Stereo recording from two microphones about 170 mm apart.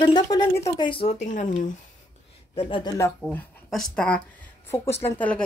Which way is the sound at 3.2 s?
Centre (ahead or behind).